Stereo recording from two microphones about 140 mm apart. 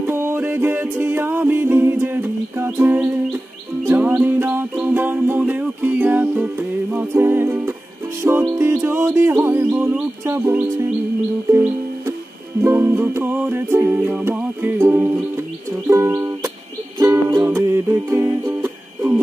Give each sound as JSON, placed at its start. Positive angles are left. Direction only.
{"t": 0.0, "sound": "music", "side_deg": -15}
{"t": 12.6, "sound": "music", "side_deg": -20}